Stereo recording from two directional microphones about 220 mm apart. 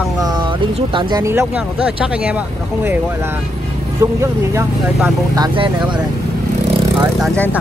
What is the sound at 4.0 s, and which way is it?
Speech, 10° right (ahead or behind).